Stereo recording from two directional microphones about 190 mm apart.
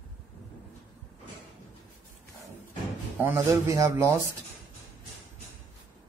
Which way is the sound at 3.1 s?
10° right (ahead or behind).